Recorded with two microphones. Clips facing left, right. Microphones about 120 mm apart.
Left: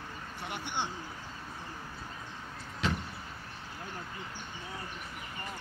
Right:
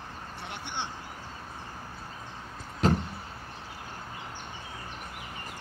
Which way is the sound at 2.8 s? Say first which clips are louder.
Right 8 dB; 45° right (ahead or behind).